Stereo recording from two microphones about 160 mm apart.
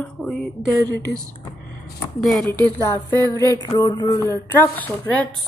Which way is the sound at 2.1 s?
Centre (ahead or behind).